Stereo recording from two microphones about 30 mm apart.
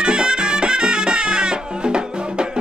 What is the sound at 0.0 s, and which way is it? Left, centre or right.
Music, right.